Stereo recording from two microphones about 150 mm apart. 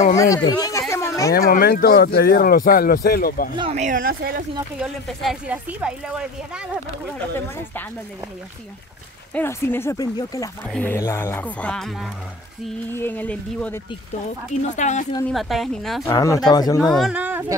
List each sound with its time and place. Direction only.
0.1 s speech: 25° left (ahead or behind)
1.3 s speech: 85° left
3.7 s speech: 60° right (ahead or behind); by 4.5 s 80° right
4.7 s a woman's voice: centre (ahead or behind)
9.3 s speech: 15° left (ahead or behind)
10.7 s speech: 10° left (ahead or behind)
14.7 s speech: 55° left (ahead or behind)
15.2 s a woman's voice: centre (ahead or behind)
16.1 s speech: 25° left (ahead or behind)
16.8 s a woman's voice: centre (ahead or behind)
17.2 s speech: 10° right (ahead or behind)